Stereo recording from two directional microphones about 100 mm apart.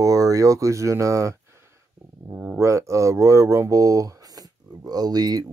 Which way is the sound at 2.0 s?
80° right.